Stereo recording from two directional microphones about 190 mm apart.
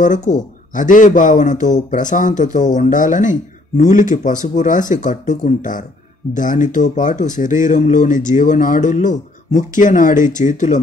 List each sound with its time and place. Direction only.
0.0 s speech: 40° left (ahead or behind)